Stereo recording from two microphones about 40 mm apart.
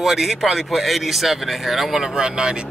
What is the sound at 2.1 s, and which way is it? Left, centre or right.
Speech, right.